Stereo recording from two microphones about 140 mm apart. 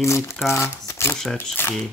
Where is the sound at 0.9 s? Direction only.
20° left (ahead or behind).